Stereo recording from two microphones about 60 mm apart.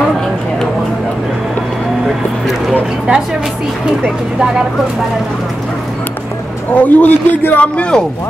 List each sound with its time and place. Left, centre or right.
6.7 s a man's voice: left